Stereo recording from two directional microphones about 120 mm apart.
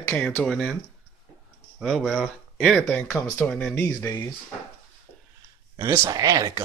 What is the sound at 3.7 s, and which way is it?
Speech, 15° left (ahead or behind).